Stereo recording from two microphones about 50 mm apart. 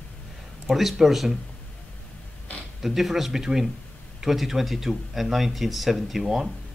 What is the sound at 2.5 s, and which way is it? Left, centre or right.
Zipper, left.